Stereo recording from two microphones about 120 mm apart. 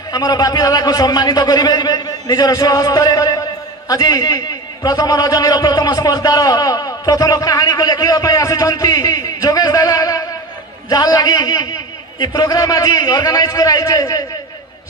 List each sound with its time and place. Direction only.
0.1 s a man's voice: 35° left (ahead or behind)